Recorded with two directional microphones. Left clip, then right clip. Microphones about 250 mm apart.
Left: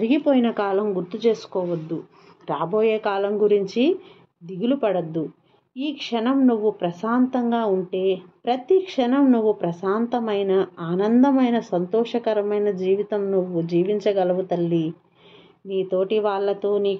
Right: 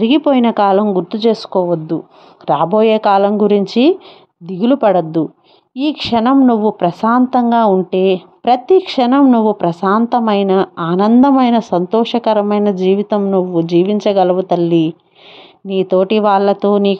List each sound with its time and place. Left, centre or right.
0.0 s a woman's voice: right